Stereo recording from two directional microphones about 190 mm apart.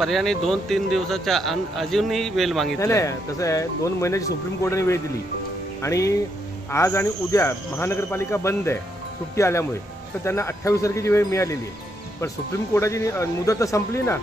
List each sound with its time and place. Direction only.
0.0 s a man's voice: centre (ahead or behind)
2.8 s speech: 15° left (ahead or behind)
12.7 s speech: 15° left (ahead or behind)